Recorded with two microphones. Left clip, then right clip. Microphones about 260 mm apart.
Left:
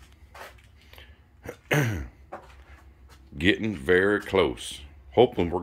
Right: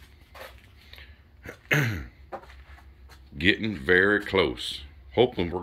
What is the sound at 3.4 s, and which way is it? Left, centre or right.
Speech, centre.